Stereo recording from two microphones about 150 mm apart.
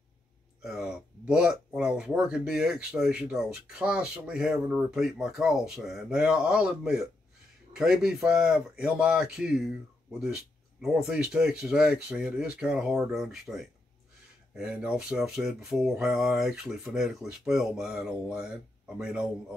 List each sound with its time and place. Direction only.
0.6 s speech: 5° right (ahead or behind)